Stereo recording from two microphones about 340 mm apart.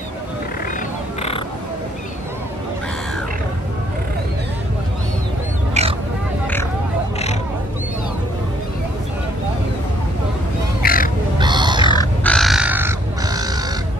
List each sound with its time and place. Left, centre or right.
5.8 s pig: centre
10.8 s crow: left
11.3 s grunt: centre
11.8 s crow: centre